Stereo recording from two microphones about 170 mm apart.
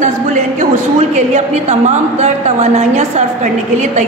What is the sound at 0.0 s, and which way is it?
A woman's voice, 45° right (ahead or behind).